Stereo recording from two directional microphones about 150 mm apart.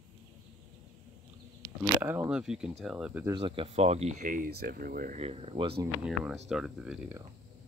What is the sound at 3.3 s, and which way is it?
Speech, 35° right (ahead or behind).